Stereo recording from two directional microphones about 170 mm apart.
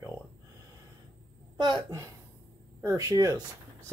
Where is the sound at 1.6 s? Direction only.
25° right (ahead or behind).